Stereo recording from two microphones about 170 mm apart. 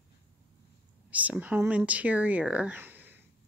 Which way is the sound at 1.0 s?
10° right (ahead or behind).